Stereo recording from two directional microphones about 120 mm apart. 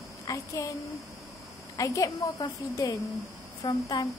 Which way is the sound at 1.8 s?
25° left (ahead or behind).